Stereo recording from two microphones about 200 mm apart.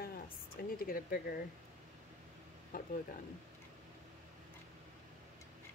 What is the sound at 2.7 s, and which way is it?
Speech, 45° left (ahead or behind).